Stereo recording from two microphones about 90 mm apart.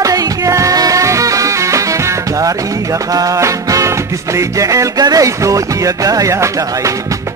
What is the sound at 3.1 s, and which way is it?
Music, 40° right (ahead or behind).